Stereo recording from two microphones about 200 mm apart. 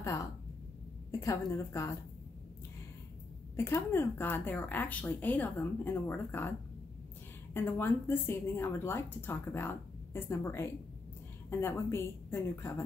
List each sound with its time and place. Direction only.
0.0 s a sound: 15° left (ahead or behind)
1.2 s a woman's voice: 15° left (ahead or behind)
3.5 s a woman's voice: 10° left (ahead or behind)
7.5 s a woman's voice: 10° left (ahead or behind)